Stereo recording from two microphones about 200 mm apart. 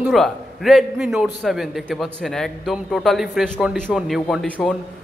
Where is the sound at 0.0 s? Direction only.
Centre (ahead or behind).